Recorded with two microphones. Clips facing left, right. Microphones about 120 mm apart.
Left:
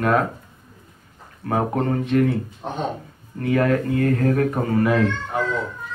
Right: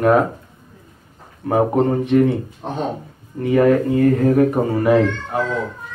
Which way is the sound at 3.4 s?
20° right (ahead or behind).